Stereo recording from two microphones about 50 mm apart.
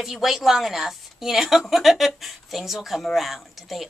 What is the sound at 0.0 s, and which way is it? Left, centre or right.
A woman's voice, centre.